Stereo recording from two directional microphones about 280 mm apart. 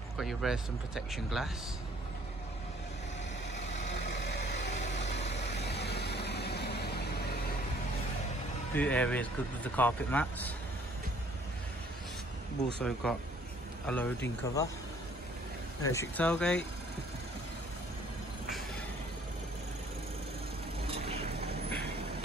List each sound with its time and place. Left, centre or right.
0.2 s speech: centre
4.2 s vehicle: left
8.7 s speech: centre
12.6 s speech: centre
15.8 s speech: centre
20.9 s vehicle: right